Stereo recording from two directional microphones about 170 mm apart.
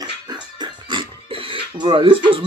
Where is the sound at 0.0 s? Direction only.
25° right (ahead or behind).